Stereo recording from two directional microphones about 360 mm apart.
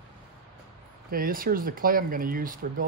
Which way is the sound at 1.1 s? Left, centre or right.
Right.